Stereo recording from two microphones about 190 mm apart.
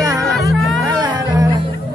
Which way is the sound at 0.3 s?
Centre (ahead or behind).